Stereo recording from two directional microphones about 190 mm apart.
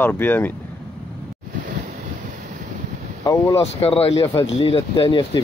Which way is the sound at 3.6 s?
30° left (ahead or behind).